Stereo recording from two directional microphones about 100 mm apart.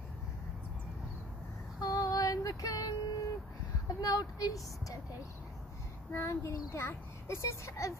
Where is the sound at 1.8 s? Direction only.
40° left (ahead or behind).